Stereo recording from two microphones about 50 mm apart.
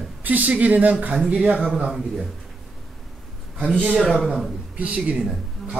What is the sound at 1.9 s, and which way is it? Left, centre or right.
Speech, centre.